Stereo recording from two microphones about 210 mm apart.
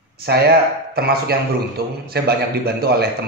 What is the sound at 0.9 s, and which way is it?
A man's voice, 45° right (ahead or behind).